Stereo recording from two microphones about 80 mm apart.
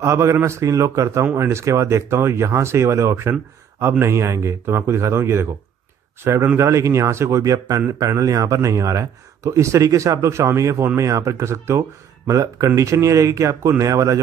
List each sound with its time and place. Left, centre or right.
0.0 s speech: right